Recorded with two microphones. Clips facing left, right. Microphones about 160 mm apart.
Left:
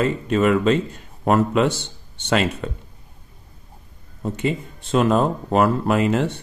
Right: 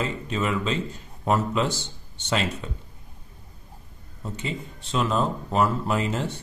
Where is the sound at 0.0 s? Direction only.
60° left (ahead or behind).